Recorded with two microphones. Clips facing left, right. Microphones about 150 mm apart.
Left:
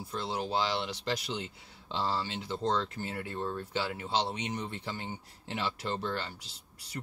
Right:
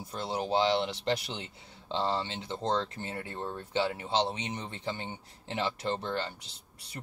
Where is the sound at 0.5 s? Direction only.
20° right (ahead or behind).